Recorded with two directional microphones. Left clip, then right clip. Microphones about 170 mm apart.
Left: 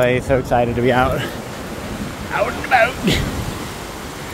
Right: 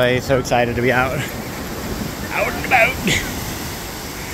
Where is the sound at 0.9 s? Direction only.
30° left (ahead or behind).